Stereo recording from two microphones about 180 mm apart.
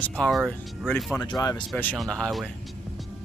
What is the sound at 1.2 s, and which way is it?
Speech, 20° left (ahead or behind).